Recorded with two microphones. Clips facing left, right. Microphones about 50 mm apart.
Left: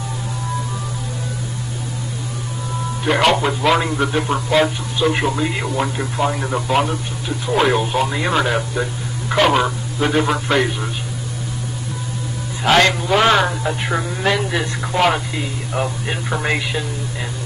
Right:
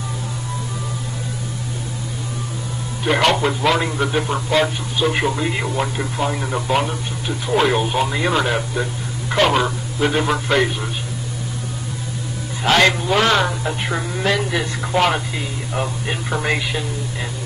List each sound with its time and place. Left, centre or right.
3.1 s speech: centre
12.6 s speech: centre